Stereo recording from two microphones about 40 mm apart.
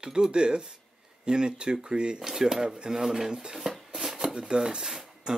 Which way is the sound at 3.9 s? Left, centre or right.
Centre.